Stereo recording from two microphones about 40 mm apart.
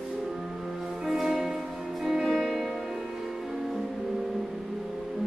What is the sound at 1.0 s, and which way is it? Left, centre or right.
Music, centre.